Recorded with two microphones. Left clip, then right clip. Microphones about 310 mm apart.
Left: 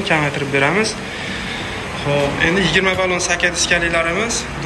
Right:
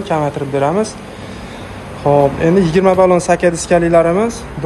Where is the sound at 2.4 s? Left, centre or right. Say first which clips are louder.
Right 4 dB; centre.